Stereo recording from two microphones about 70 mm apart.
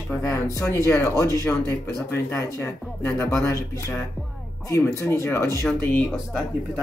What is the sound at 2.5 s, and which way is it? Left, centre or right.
A man's voice, left.